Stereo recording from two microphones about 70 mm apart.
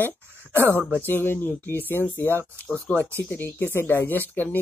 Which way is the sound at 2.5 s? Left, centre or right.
Left.